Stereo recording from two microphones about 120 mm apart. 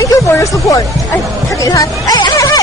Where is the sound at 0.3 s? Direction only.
25° left (ahead or behind).